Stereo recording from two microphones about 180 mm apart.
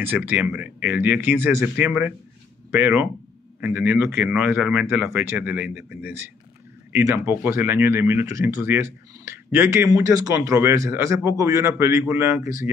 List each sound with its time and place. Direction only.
0.0 s speech: 10° right (ahead or behind)